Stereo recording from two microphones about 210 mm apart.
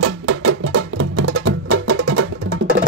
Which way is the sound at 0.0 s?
75° right (ahead or behind).